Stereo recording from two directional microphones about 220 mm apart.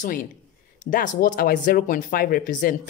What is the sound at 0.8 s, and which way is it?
Speech, 35° left (ahead or behind).